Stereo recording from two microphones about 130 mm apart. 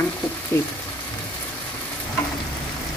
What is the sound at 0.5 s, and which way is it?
Frying, 20° left (ahead or behind).